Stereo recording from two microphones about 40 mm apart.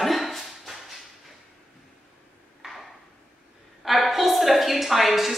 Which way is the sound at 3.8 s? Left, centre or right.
Centre.